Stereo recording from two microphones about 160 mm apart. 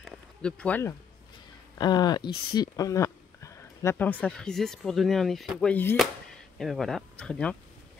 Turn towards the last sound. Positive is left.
turn(degrees=5)  # may be behind; listen again after turning